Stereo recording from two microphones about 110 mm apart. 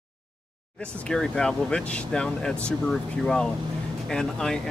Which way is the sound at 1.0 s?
5° left (ahead or behind).